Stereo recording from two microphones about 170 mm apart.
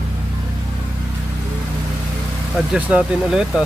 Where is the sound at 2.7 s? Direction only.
5° right (ahead or behind).